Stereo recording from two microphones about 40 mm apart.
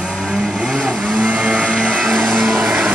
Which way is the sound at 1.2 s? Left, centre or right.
Right.